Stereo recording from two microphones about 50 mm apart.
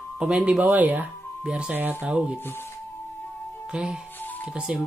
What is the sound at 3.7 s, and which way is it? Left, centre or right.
Speech, centre.